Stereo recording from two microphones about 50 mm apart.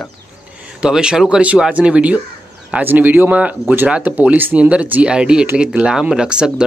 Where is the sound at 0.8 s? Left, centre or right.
Centre.